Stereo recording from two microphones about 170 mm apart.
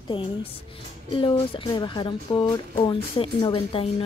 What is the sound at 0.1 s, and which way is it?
A woman's voice, 30° left (ahead or behind).